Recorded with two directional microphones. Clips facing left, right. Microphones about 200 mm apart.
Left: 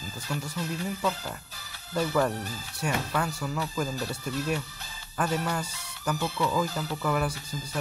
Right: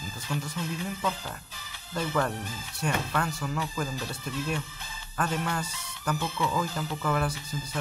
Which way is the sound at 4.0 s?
40° left (ahead or behind).